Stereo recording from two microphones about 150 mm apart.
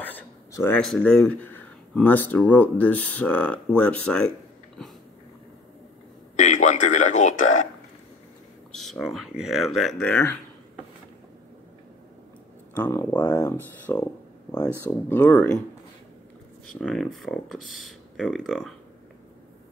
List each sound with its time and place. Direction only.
0.0 s a sound: 15° left (ahead or behind)
0.7 s speech: 5° left (ahead or behind)
6.3 s speech: 55° left (ahead or behind)
8.7 s speech: centre (ahead or behind)
12.7 s speech: 15° left (ahead or behind)
15.0 s speech: 10° left (ahead or behind)
16.7 s speech: 5° left (ahead or behind)